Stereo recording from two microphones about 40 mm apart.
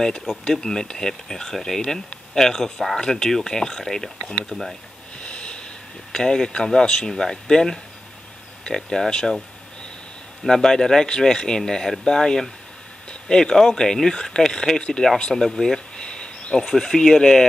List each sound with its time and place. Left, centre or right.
0.5 s speech: centre
5.2 s a sound: left
6.1 s speech: centre
10.4 s speech: centre
16.0 s speech: left